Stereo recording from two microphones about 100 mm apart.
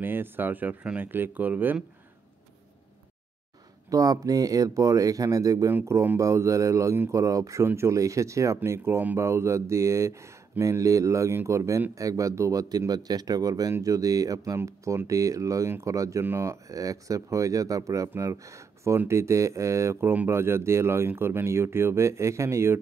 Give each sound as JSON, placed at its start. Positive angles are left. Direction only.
{"t": 0.0, "sound": "speech", "side_deg": -20}
{"t": 3.9, "sound": "speech", "side_deg": -35}